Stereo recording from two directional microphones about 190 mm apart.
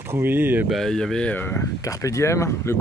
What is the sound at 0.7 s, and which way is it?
Speech, centre (ahead or behind).